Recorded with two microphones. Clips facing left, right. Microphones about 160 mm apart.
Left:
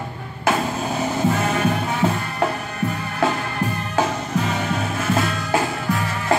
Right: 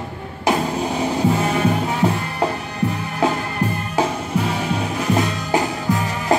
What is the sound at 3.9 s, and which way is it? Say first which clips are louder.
Music: even; 10° right (ahead or behind).